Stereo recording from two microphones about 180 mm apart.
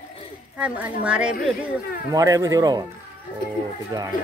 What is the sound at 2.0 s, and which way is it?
Speech, 20° right (ahead or behind).